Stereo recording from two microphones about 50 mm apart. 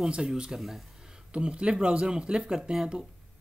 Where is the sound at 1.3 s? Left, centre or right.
Right.